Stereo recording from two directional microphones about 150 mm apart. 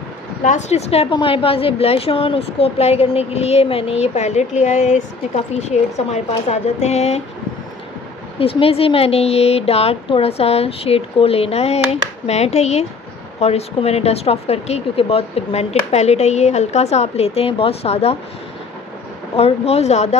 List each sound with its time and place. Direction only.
0.4 s speech: 50° left (ahead or behind)
8.4 s a woman's voice: 40° left (ahead or behind)
19.3 s speech: 45° left (ahead or behind)